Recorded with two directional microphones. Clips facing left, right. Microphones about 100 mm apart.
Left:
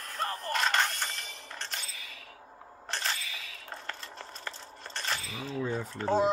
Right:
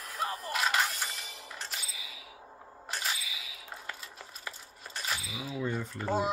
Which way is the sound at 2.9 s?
10° right (ahead or behind).